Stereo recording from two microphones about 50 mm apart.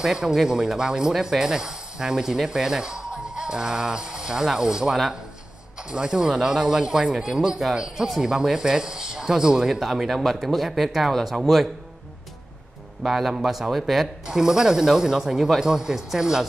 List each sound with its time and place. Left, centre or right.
0.0 s speech: centre
13.0 s speech: centre
14.2 s speech: centre